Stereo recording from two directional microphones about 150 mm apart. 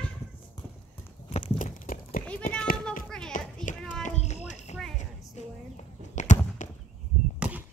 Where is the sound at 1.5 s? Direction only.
65° left (ahead or behind).